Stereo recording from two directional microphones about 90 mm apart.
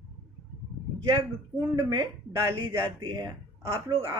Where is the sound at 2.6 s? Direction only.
50° right (ahead or behind).